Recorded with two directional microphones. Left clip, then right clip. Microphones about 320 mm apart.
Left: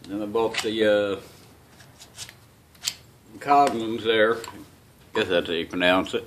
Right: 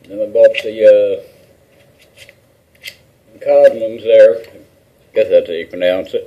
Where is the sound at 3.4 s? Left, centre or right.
Left.